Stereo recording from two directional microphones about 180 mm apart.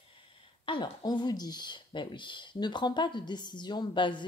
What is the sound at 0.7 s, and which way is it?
Speech, 25° left (ahead or behind).